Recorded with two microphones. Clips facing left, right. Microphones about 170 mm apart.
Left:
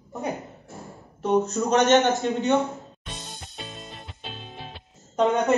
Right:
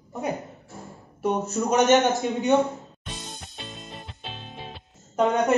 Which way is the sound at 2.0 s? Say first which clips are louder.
Even; 15° right (ahead or behind).